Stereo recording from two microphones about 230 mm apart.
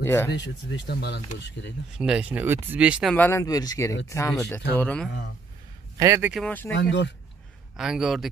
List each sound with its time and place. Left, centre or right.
0.0 s speech: centre
0.7 s speech: left
2.0 s speech: centre
5.9 s speech: centre
6.4 s speech: centre
6.7 s speech: left
7.7 s speech: centre